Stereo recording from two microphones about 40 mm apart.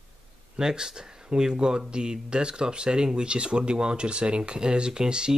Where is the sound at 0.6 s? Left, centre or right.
Centre.